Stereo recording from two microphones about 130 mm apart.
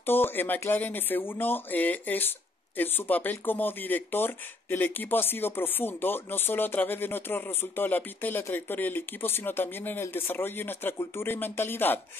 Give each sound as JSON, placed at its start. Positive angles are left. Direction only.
{"t": 0.0, "sound": "speech", "side_deg": 15}